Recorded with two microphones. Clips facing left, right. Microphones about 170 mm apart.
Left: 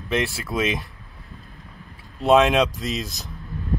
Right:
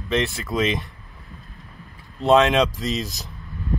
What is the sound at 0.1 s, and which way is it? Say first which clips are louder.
Speech: right 1 dB; 5° left (ahead or behind).